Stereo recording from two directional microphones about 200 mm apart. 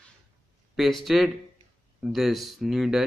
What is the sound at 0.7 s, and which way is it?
Speech, centre (ahead or behind).